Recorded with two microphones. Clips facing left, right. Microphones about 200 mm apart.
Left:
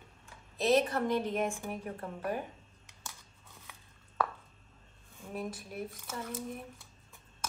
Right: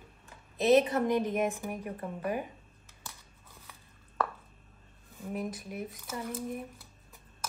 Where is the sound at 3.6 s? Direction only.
Centre (ahead or behind).